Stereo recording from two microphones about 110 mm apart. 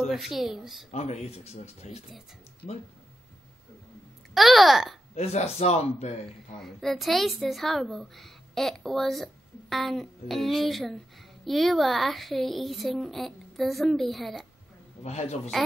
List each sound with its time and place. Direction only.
0.1 s a woman's voice: centre (ahead or behind)
0.9 s speech: 90° left
4.3 s a woman's voice: centre (ahead or behind)
5.1 s speech: 75° left (ahead or behind)
6.6 s a woman's voice: 5° left (ahead or behind)
15.0 s a man's voice: 90° left